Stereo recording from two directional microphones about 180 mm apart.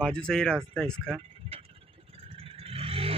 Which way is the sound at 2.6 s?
30° right (ahead or behind).